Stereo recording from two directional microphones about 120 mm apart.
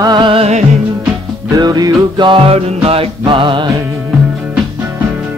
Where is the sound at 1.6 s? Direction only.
35° right (ahead or behind).